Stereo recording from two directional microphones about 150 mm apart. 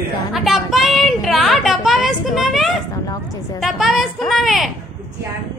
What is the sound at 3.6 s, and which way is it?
A woman's voice, centre (ahead or behind).